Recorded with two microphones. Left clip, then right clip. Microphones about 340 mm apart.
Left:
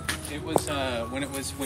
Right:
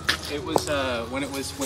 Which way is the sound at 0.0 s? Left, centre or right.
Centre.